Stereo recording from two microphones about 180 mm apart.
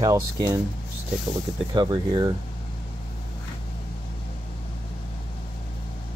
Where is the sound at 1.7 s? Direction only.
25° right (ahead or behind).